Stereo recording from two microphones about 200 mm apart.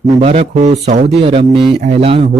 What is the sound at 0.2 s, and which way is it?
Speech, 35° right (ahead or behind).